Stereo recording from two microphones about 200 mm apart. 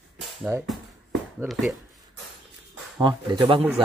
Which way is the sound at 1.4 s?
Centre (ahead or behind).